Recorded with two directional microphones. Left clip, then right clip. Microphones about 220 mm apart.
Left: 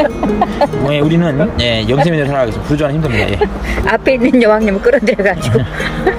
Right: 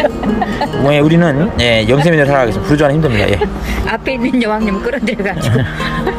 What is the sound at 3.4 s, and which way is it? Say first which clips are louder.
Speech: left 3 dB; 20° left (ahead or behind).